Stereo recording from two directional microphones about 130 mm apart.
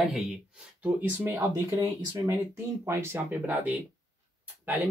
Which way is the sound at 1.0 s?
20° right (ahead or behind).